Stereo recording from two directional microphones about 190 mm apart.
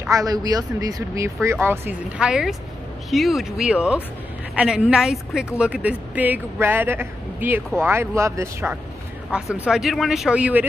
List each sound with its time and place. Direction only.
0.1 s a woman's voice: 20° right (ahead or behind)
9.3 s speech: 5° right (ahead or behind)